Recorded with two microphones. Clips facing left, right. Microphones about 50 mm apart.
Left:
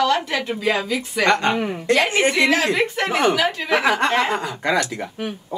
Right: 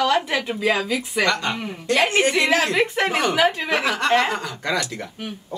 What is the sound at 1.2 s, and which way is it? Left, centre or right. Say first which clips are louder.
Speech: left 7 dB; left.